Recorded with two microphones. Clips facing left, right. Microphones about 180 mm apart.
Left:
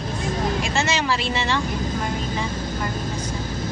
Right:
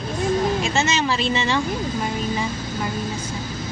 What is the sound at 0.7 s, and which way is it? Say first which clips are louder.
Speech: right 1 dB; 20° right (ahead or behind).